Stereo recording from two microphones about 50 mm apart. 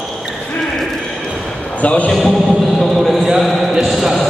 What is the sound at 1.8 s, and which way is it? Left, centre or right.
Speech, left.